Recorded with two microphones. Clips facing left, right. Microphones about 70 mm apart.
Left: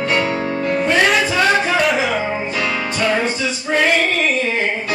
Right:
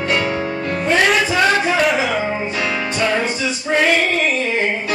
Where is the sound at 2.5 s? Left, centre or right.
Centre.